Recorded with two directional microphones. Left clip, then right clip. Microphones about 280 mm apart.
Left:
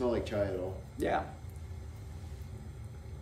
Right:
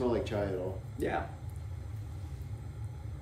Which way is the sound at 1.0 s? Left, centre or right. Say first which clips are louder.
Left 2 dB; centre.